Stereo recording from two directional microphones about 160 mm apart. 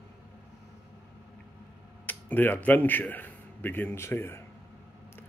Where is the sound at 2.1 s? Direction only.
10° left (ahead or behind).